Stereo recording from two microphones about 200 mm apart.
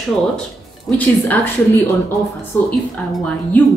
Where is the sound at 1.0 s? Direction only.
10° left (ahead or behind).